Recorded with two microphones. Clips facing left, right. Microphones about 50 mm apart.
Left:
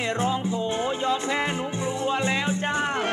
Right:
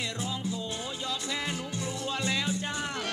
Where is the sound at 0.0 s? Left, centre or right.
Left.